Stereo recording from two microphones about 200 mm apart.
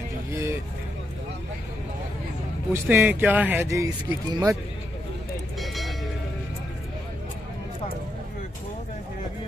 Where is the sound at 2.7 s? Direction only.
10° right (ahead or behind).